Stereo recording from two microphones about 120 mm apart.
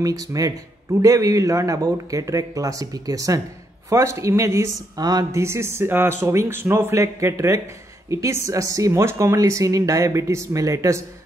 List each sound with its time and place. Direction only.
0.0 s speech: 30° right (ahead or behind)
5.4 s speech: 20° right (ahead or behind)